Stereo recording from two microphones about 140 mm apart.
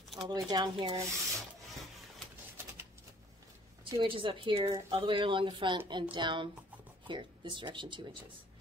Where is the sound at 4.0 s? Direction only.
35° right (ahead or behind).